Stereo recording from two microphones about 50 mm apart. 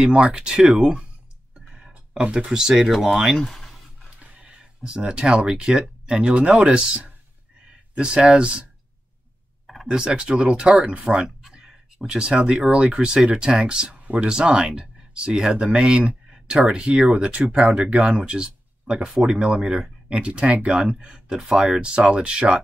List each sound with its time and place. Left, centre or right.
0.0 s speech: centre
1.7 s a sound: centre
2.3 s speech: centre
4.2 s speech: right
9.8 s speech: centre
12.2 s speech: centre
12.6 s speech: right
19.0 s speech: centre
20.1 s speech: right
21.4 s speech: centre